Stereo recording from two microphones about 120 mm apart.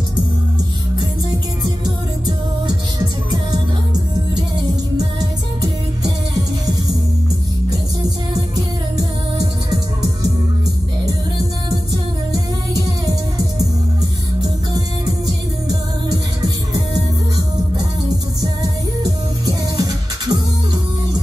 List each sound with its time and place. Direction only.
8.9 s music: 30° right (ahead or behind)
11.9 s music: 30° right (ahead or behind)
18.4 s music: 30° right (ahead or behind)